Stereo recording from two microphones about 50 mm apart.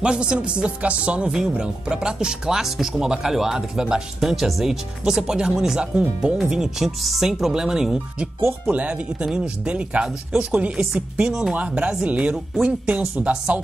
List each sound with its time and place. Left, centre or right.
0.0 s speech: centre
8.6 s speech: right